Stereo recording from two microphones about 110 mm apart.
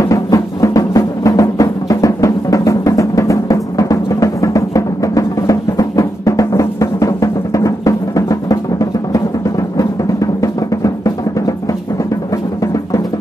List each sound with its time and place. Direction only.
0.1 s music: 30° left (ahead or behind)